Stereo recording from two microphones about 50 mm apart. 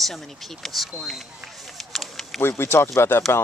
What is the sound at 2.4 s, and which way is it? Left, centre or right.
Speech, left.